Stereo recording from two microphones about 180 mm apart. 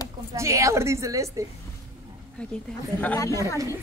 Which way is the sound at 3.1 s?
15° left (ahead or behind).